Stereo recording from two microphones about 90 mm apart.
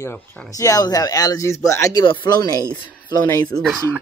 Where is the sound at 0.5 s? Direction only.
40° left (ahead or behind).